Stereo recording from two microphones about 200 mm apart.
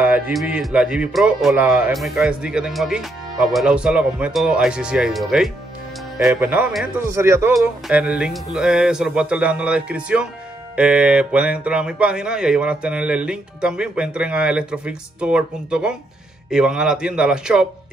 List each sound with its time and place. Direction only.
0.0 s speech: 5° right (ahead or behind)
7.1 s speech: 15° right (ahead or behind)